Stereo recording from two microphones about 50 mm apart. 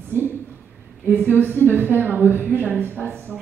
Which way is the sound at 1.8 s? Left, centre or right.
Right.